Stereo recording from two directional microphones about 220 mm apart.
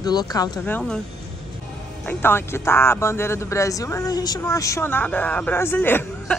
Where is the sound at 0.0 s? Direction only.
15° left (ahead or behind).